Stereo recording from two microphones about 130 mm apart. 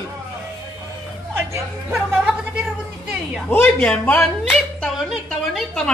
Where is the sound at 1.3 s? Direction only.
20° right (ahead or behind).